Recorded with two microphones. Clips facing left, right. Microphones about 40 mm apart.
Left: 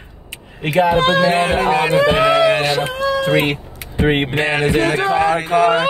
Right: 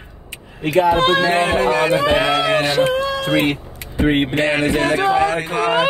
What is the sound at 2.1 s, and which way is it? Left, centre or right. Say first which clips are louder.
Speech: left 3 dB; centre.